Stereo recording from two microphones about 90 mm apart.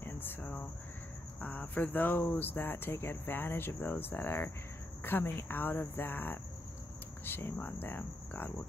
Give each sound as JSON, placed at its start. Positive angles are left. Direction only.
{"t": 0.0, "sound": "a sound", "side_deg": 25}
{"t": 1.4, "sound": "cricket", "side_deg": 15}
{"t": 2.3, "sound": "speech", "side_deg": 20}